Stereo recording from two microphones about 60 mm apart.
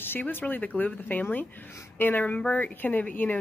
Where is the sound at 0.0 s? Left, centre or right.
Left.